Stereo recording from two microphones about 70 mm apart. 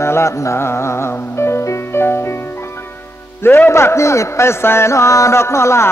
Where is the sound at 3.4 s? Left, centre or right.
Left.